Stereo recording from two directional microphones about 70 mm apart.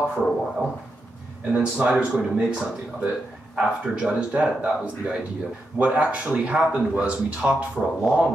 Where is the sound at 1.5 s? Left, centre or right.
Centre.